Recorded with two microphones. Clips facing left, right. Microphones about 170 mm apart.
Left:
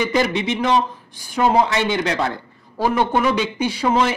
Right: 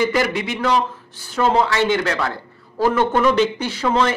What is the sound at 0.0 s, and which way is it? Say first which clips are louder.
Speech: even; 20° left (ahead or behind).